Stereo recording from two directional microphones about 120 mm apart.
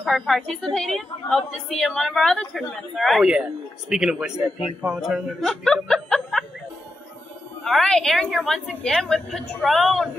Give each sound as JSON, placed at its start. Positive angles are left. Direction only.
{"t": 0.0, "sound": "a woman's voice", "side_deg": 0}
{"t": 5.9, "sound": "snicker", "side_deg": 5}
{"t": 7.6, "sound": "a woman's voice", "side_deg": 5}